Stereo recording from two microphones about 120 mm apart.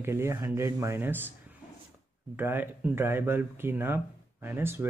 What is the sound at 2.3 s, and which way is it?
Speech, 15° right (ahead or behind).